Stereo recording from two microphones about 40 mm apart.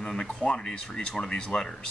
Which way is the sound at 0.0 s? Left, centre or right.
Left.